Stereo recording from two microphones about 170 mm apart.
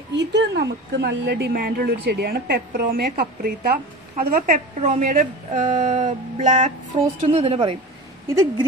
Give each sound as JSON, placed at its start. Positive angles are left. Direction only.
{"t": 0.1, "sound": "a woman's voice", "side_deg": -90}
{"t": 6.9, "sound": "a woman's voice", "side_deg": -30}